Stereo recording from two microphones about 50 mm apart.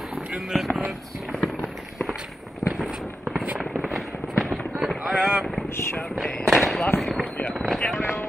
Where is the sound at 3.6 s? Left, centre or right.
Centre.